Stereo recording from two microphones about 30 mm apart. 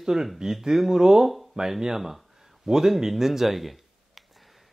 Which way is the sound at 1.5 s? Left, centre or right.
Centre.